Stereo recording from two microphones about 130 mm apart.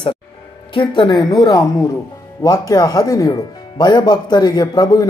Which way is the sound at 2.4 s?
30° left (ahead or behind).